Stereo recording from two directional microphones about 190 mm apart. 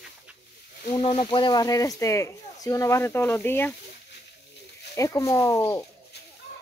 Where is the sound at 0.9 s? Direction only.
25° left (ahead or behind).